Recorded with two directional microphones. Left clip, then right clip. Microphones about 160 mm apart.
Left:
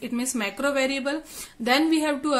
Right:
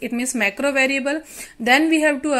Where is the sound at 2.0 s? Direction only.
25° right (ahead or behind).